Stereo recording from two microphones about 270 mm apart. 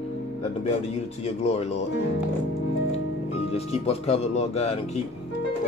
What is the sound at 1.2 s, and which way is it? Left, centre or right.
Speech, left.